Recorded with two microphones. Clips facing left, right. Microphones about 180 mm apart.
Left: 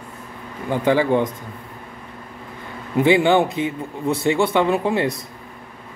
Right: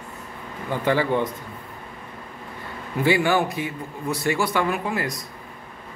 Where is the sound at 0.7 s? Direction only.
15° left (ahead or behind).